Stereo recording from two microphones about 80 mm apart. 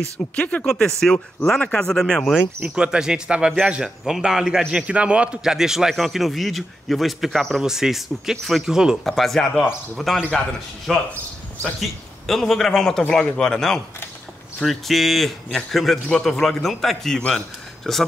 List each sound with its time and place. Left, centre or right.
0.4 s speech: centre
0.7 s speech: centre
2.6 s a man's voice: centre
12.3 s a man's voice: centre